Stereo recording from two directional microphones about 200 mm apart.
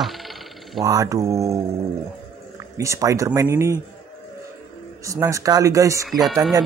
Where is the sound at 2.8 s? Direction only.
15° right (ahead or behind).